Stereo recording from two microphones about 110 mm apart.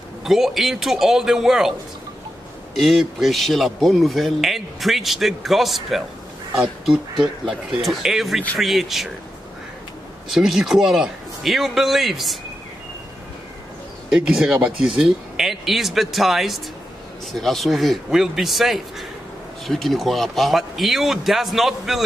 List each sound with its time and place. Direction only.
0.2 s a man's voice: 5° right (ahead or behind)
2.7 s a man's voice: centre (ahead or behind)
10.3 s a man's voice: centre (ahead or behind)
14.1 s a man's voice: 5° right (ahead or behind)